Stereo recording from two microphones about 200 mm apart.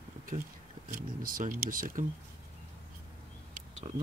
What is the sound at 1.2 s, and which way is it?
Speech, 45° right (ahead or behind).